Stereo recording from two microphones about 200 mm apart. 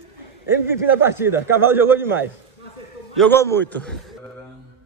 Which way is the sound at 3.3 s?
10° left (ahead or behind).